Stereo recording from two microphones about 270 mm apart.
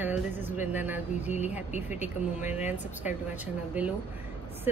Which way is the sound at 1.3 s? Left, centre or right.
Left.